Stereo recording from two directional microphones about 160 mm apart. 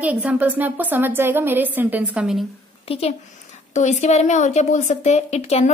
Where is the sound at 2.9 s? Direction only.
40° left (ahead or behind).